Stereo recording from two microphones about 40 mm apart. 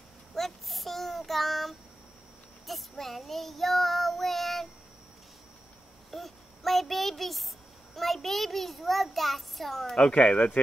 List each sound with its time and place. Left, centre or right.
0.3 s child singing: centre
6.1 s a sound: centre
10.0 s speech: left